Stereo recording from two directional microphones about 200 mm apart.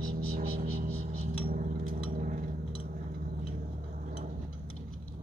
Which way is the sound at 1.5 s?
45° right (ahead or behind).